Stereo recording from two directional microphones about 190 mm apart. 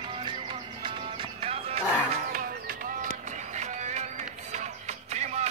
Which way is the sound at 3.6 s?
40° right (ahead or behind).